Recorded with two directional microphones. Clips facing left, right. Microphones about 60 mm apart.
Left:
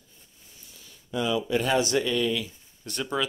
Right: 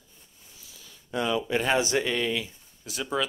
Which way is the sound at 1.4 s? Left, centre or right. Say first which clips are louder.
Left 1 dB; right.